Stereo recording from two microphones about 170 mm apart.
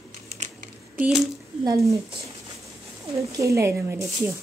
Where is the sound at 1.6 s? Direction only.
20° right (ahead or behind).